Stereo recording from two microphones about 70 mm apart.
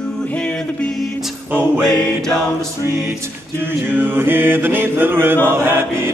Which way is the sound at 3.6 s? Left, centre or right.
Right.